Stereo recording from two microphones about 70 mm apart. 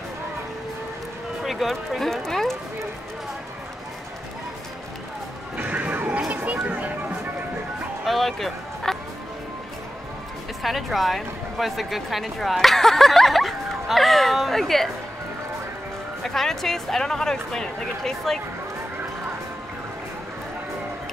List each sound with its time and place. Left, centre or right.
1.4 s speech: centre
5.6 s music: right
8.0 s music: centre
10.6 s speech: centre
16.2 s speech: centre